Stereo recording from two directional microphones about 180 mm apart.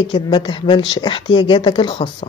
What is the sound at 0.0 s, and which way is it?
Speech, 30° left (ahead or behind).